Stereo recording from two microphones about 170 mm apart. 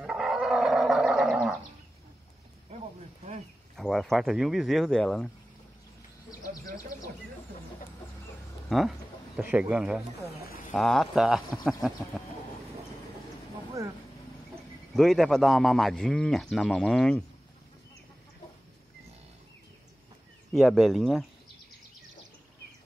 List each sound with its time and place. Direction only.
0.0 s a sound: 5° right (ahead or behind)
3.7 s speech: centre (ahead or behind)
6.4 s speech: 20° left (ahead or behind)
8.6 s a man's voice: centre (ahead or behind)
15.0 s speech: centre (ahead or behind)
20.5 s speech: centre (ahead or behind)